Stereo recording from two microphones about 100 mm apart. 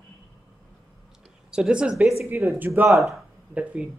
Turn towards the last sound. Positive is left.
turn(degrees=-10)  # may be behind; listen again after turning